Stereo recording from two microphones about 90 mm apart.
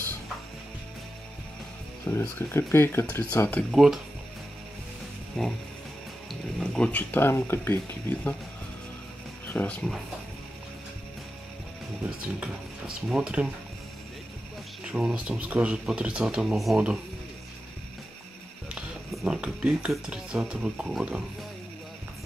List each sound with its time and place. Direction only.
2.0 s speech: 30° left (ahead or behind)
3.7 s speech: 5° right (ahead or behind)
5.4 s speech: 5° left (ahead or behind)
6.6 s speech: 5° left (ahead or behind)
6.9 s speech: 20° left (ahead or behind)
9.5 s speech: 20° left (ahead or behind)
12.4 s speech: 10° right (ahead or behind)
14.9 s speech: 10° right (ahead or behind)
18.8 s speech: 10° right (ahead or behind)